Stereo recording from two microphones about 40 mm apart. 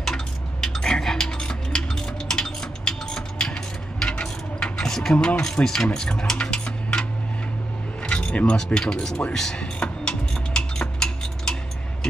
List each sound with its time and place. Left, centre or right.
0.0 s dishes: centre
1.4 s a sound: centre
4.0 s coin: centre
5.1 s speech: left
5.9 s music: left
8.1 s keys jangling: left
8.7 s speech: centre
9.6 s a sound: left